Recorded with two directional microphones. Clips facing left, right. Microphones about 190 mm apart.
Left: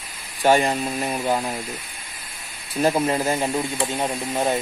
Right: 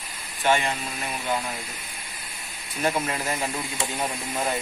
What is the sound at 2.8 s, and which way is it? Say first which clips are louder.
Speech: left 6 dB; 30° left (ahead or behind).